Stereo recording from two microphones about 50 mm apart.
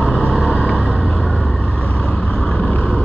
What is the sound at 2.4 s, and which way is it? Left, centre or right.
Vehicle, left.